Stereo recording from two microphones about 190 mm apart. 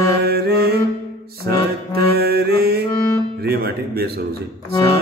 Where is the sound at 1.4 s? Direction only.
55° right (ahead or behind).